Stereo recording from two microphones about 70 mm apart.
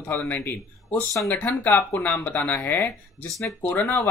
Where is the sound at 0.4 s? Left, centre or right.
Left.